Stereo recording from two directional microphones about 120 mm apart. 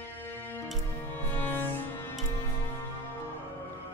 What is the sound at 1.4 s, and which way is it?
Cello, 15° left (ahead or behind).